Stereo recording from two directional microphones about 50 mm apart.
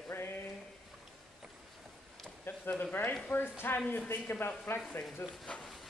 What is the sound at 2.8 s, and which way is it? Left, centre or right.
Speech, left.